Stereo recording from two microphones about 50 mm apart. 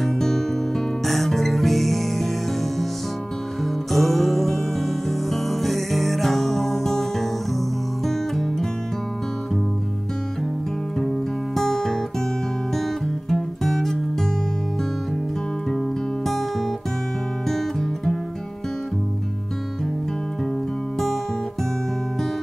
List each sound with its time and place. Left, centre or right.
0.0 s music: centre
3.9 s music: centre
11.0 s music: centre
13.3 s music: centre
17.5 s music: centre